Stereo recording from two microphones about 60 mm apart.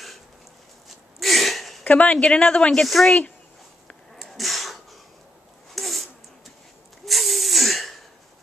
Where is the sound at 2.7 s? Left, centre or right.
Centre.